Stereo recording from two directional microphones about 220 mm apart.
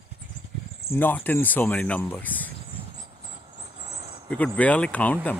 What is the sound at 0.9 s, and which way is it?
Speech, 10° left (ahead or behind).